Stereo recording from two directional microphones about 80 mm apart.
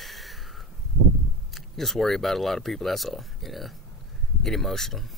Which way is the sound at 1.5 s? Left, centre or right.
Centre.